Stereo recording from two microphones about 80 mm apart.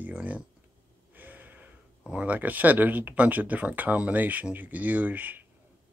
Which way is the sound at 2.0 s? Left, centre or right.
Centre.